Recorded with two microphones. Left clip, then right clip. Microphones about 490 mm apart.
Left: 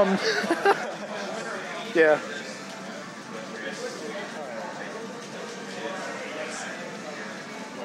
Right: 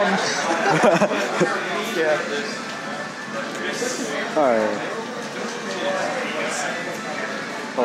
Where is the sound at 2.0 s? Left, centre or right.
Left.